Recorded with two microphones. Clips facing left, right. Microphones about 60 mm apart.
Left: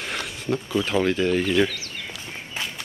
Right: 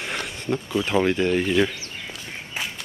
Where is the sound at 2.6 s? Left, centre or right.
Centre.